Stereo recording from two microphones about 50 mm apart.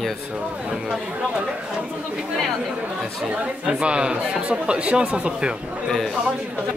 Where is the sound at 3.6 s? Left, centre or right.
Right.